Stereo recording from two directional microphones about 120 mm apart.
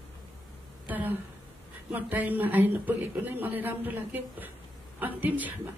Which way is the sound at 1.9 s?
15° right (ahead or behind).